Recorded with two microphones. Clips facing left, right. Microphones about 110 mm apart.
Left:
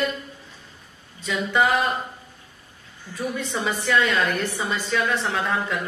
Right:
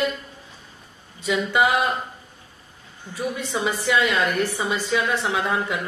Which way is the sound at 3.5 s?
10° right (ahead or behind).